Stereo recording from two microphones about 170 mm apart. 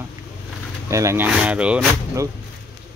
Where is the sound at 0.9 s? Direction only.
15° right (ahead or behind).